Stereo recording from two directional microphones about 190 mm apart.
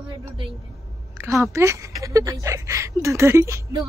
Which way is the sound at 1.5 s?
15° right (ahead or behind).